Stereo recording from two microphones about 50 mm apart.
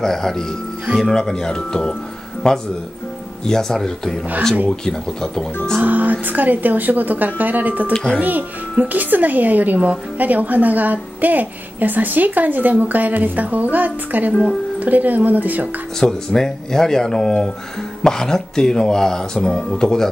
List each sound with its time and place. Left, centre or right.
0.0 s speech: centre
5.8 s a woman's voice: right
7.9 s speech: centre
8.2 s a woman's voice: right
16.0 s speech: centre